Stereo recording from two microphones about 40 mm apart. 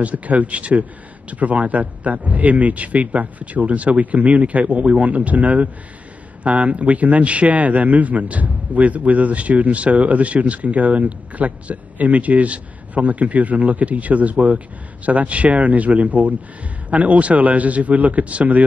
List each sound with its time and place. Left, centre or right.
0.0 s a man's voice: right